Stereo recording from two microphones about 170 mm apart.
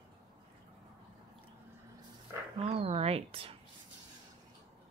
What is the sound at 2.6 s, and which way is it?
Speech, 35° right (ahead or behind).